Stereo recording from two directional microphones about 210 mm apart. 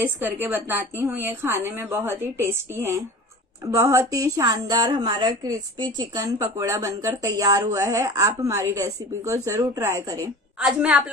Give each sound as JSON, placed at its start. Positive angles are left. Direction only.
{"t": 0.0, "sound": "speech", "side_deg": -10}
{"t": 10.6, "sound": "a woman's voice", "side_deg": -5}